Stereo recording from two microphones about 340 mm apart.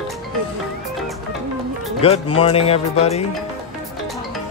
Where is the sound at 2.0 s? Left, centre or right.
Centre.